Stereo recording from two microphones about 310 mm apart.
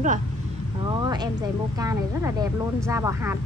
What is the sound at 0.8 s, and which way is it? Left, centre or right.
A woman's voice, centre.